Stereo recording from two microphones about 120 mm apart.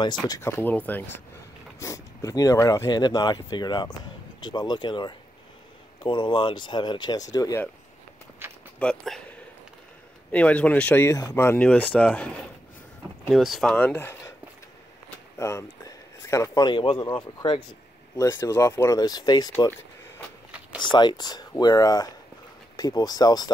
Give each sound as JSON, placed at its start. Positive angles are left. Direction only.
{"t": 0.3, "sound": "speech", "side_deg": 20}
{"t": 1.8, "sound": "speech", "side_deg": 25}
{"t": 8.4, "sound": "a sound", "side_deg": -20}
{"t": 8.7, "sound": "speech", "side_deg": 5}
{"t": 10.3, "sound": "speech", "side_deg": 10}
{"t": 11.1, "sound": "speech", "side_deg": 25}
{"t": 13.3, "sound": "speech", "side_deg": 0}
{"t": 13.7, "sound": "speech", "side_deg": 10}
{"t": 15.3, "sound": "a sound", "side_deg": 25}
{"t": 16.6, "sound": "speech", "side_deg": 45}
{"t": 18.1, "sound": "speech", "side_deg": 25}
{"t": 18.9, "sound": "speech", "side_deg": 35}
{"t": 20.8, "sound": "speech", "side_deg": 40}